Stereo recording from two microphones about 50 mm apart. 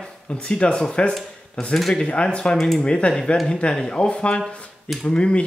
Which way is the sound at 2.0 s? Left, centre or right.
Left.